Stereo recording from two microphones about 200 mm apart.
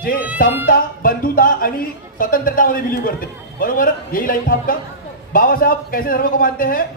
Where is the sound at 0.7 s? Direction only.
45° left (ahead or behind).